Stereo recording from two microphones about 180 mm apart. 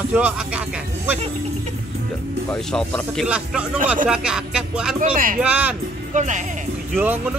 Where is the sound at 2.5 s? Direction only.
5° left (ahead or behind).